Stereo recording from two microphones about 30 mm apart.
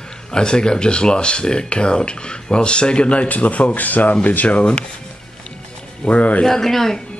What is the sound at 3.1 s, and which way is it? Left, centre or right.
Speech, left.